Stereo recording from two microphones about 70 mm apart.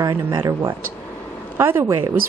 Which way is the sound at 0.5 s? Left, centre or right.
Right.